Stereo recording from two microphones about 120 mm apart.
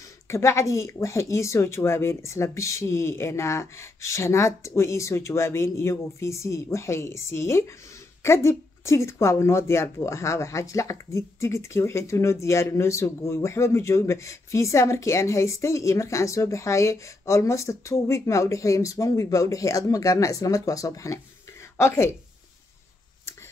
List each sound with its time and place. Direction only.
0.3 s speech: 25° left (ahead or behind)